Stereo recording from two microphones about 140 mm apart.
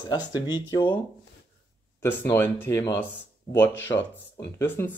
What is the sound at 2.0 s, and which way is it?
Speech, 15° left (ahead or behind).